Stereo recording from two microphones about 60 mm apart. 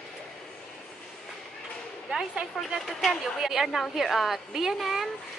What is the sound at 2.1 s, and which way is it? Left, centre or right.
A woman's voice, centre.